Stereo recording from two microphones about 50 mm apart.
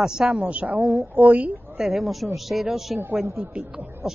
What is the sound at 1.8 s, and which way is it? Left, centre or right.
Speech, centre.